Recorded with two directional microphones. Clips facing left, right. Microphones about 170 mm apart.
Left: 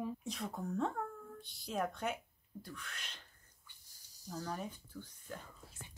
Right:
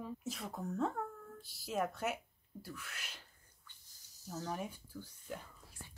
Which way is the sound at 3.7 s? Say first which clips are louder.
Right 2 dB; 10° left (ahead or behind).